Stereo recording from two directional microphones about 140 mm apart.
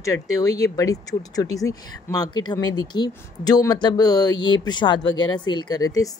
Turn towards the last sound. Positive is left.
turn(degrees=25)  # may be behind; listen again after turning